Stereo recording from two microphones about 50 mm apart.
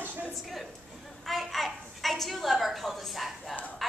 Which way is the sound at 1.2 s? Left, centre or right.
Centre.